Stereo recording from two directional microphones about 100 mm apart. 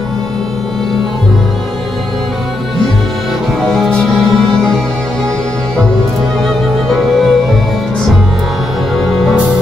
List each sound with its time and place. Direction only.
6.4 s music: 5° left (ahead or behind)